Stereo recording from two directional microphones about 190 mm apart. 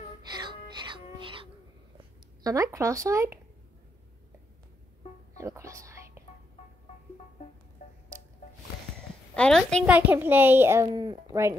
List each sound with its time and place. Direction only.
0.2 s music: 20° right (ahead or behind)
2.4 s a child's voice: 15° right (ahead or behind)
5.4 s whispering: 15° right (ahead or behind)
9.3 s a woman's voice: 5° left (ahead or behind)
9.8 s a child's voice: 10° right (ahead or behind)
10.9 s speech: 25° right (ahead or behind)